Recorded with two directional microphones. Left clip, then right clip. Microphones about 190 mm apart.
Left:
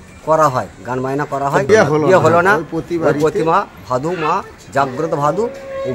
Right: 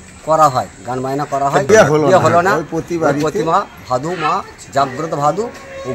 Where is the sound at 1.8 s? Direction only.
65° right (ahead or behind).